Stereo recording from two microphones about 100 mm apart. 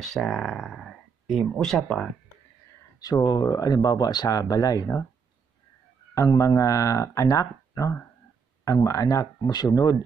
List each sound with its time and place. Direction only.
0.0 s speech: centre (ahead or behind)
3.2 s speech: 35° left (ahead or behind)
6.1 s speech: 30° left (ahead or behind)